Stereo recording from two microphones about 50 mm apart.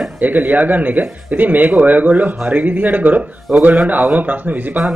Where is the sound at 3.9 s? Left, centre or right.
Right.